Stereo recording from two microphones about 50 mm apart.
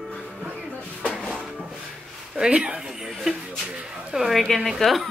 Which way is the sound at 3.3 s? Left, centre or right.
Centre.